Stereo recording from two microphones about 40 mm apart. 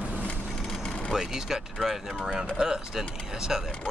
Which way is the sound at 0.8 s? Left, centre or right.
Left.